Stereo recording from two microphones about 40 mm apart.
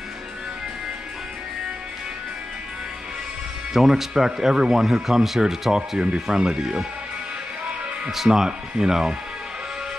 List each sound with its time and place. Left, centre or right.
3.7 s speech: centre
8.3 s speech: centre